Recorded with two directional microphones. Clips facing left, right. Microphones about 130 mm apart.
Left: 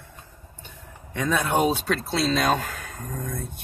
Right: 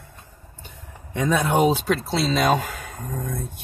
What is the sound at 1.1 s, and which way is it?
Speech, 15° right (ahead or behind).